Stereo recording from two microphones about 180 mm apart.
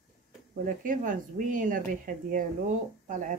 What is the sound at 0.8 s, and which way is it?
Speech, 45° right (ahead or behind).